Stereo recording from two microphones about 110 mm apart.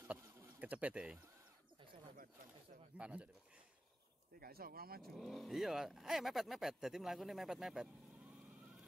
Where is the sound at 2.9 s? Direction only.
10° right (ahead or behind).